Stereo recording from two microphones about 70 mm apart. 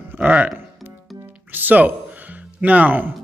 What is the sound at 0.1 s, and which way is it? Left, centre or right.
Music, right.